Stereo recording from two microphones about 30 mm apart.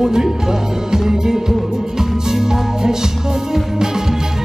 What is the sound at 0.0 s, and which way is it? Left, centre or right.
Speech, centre.